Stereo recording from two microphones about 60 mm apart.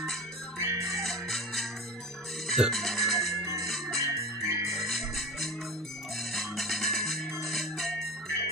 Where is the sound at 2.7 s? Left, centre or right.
Centre.